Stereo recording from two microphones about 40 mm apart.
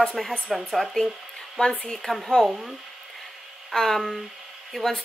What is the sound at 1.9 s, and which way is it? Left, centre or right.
Speech, centre.